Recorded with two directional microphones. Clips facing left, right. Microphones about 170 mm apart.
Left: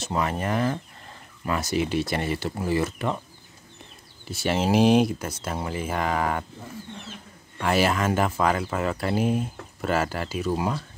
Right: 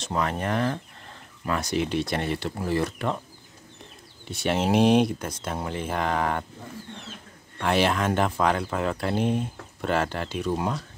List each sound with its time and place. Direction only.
0.0 s speech: 5° left (ahead or behind)
4.3 s speech: centre (ahead or behind)